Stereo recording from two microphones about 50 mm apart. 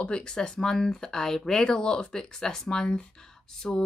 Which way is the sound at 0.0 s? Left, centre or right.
Centre.